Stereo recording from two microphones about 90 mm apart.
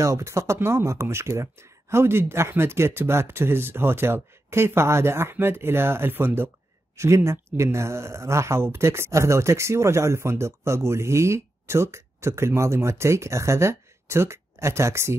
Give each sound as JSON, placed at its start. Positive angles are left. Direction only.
{"t": 0.0, "sound": "speech", "side_deg": -35}